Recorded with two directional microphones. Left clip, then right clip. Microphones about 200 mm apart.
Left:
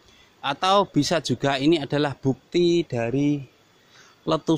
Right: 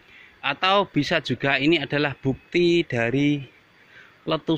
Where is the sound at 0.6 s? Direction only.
15° left (ahead or behind); by 3.4 s centre (ahead or behind).